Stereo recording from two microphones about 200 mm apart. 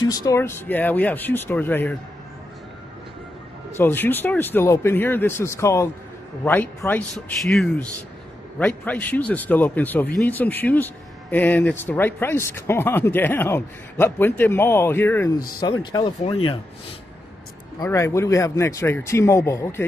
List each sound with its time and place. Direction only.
0.0 s speech: 20° left (ahead or behind)
3.7 s speech: 10° left (ahead or behind)
17.8 s speech: 15° left (ahead or behind)